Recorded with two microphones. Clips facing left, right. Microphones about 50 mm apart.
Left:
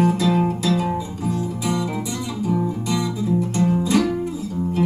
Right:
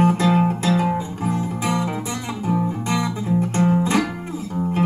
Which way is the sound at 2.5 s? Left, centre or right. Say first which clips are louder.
Right 1 dB; right.